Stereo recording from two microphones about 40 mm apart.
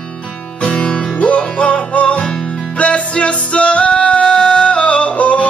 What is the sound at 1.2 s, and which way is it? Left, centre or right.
Music, left.